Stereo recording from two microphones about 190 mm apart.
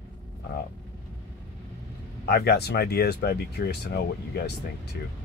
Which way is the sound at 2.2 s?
55° left (ahead or behind).